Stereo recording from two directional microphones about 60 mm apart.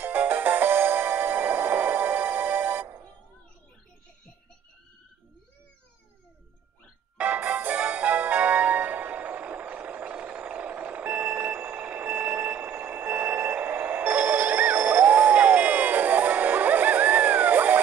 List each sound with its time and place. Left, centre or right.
0.0 s music: right
7.2 s music: right